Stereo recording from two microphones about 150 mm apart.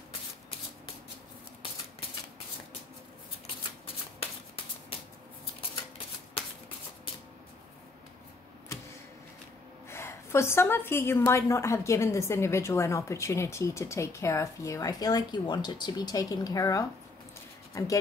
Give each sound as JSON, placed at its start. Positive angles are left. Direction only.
{"t": 9.8, "sound": "a woman's voice", "side_deg": 15}